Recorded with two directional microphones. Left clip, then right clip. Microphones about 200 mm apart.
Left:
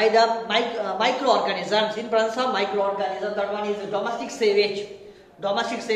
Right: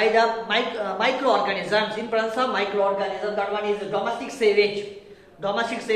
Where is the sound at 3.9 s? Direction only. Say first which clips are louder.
Right 1 dB; 15° left (ahead or behind).